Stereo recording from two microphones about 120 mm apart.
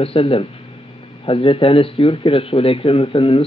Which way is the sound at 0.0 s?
50° left (ahead or behind).